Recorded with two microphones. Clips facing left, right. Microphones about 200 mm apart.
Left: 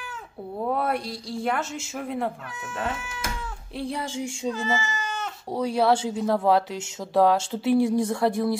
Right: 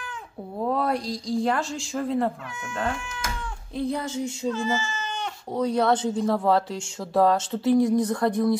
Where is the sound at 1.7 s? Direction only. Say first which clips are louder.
Right 4 dB; 5° left (ahead or behind).